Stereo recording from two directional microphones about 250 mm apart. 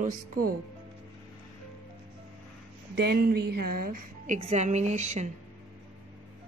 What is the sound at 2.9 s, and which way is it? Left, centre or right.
A woman's voice, right.